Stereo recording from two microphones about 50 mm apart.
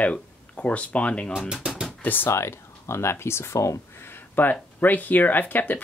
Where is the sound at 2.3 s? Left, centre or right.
Left.